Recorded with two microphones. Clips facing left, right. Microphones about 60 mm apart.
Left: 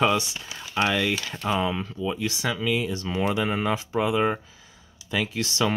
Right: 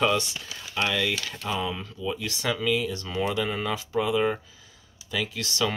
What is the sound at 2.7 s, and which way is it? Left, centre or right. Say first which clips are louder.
Speech: left 2 dB; left.